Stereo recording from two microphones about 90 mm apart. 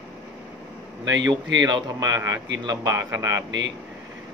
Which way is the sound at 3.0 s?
35° right (ahead or behind).